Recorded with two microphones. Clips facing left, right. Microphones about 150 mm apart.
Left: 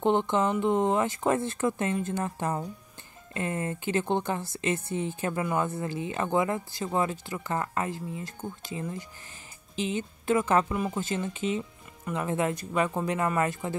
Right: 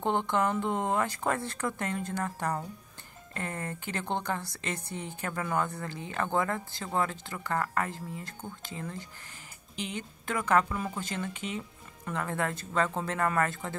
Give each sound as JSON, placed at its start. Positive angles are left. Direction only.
{"t": 0.0, "sound": "speech", "side_deg": 20}
{"t": 3.3, "sound": "speech", "side_deg": 20}